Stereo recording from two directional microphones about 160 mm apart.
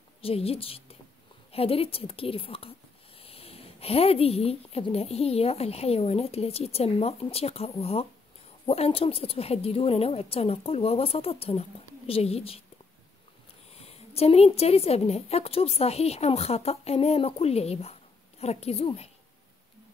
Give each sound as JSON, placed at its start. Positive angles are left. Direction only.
{"t": 0.2, "sound": "a woman's voice", "side_deg": 35}
{"t": 13.7, "sound": "a woman's voice", "side_deg": 40}